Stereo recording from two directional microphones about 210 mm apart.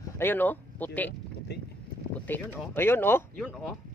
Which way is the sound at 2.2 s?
10° left (ahead or behind).